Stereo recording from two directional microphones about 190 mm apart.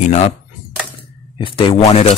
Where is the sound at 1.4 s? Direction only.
25° left (ahead or behind).